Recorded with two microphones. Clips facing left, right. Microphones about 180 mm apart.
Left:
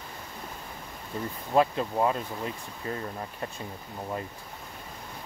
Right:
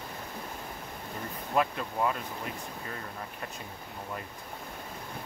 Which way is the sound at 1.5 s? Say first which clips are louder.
Left 5 dB; 30° left (ahead or behind).